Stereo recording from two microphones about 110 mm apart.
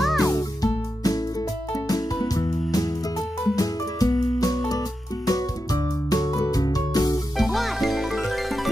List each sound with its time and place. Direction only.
0.2 s music: 35° left (ahead or behind)
7.3 s music: centre (ahead or behind)